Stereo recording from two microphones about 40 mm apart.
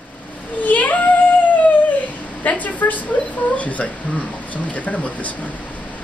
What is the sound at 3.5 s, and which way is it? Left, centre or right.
Speech, left.